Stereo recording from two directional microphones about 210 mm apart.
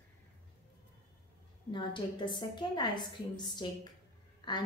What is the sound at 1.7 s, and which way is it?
A woman's voice, 20° left (ahead or behind).